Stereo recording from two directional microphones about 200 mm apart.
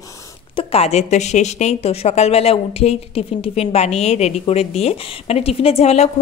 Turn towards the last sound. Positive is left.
turn(degrees=30)  # may be behind; listen again after turning